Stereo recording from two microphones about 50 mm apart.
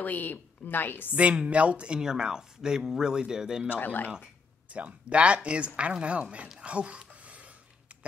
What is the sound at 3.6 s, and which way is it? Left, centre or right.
Speech, left.